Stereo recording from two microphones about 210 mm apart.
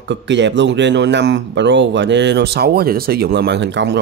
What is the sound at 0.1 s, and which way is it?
Speech, 55° right (ahead or behind).